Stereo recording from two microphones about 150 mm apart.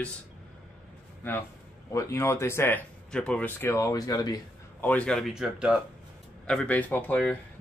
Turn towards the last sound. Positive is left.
turn(degrees=10)  # may be behind; listen again after turning